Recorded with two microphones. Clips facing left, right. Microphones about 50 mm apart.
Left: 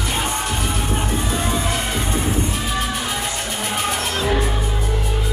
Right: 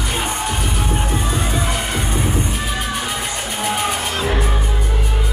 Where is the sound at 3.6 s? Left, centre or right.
Centre.